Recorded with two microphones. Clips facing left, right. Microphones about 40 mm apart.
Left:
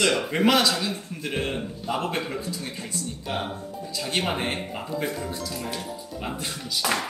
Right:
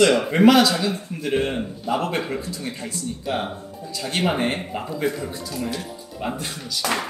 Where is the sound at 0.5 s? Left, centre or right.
Centre.